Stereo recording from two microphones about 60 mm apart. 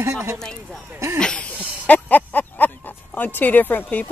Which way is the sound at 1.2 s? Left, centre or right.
Centre.